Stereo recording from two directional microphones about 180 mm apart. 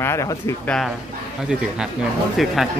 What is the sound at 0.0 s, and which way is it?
Speech, 15° left (ahead or behind).